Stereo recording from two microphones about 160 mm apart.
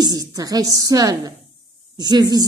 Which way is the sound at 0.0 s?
25° right (ahead or behind).